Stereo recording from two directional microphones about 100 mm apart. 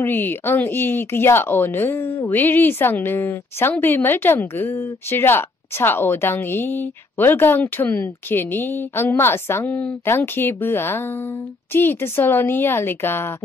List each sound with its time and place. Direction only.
0.0 s speech: 20° left (ahead or behind)